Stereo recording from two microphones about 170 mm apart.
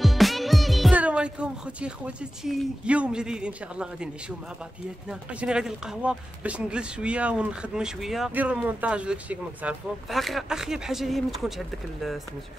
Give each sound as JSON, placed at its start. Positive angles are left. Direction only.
{"t": 0.0, "sound": "speech", "side_deg": 0}
{"t": 5.3, "sound": "speech", "side_deg": -5}